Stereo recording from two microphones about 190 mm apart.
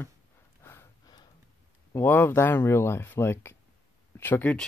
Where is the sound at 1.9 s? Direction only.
10° left (ahead or behind).